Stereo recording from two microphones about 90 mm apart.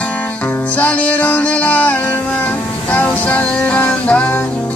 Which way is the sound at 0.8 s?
15° left (ahead or behind).